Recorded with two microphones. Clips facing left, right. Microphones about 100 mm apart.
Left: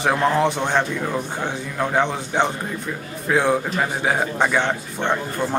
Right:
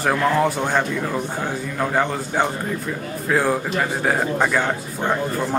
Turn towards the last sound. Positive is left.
turn(degrees=-5)  # may be behind; listen again after turning